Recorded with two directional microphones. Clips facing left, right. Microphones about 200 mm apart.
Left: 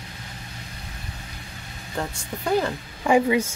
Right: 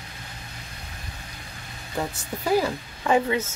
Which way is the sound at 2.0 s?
5° right (ahead or behind).